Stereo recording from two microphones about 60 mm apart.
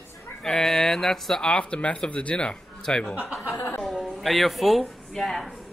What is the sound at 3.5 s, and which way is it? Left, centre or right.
Speech, left.